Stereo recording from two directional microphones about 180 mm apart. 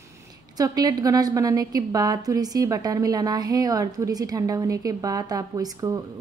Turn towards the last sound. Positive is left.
turn(degrees=-20)  # may be behind; listen again after turning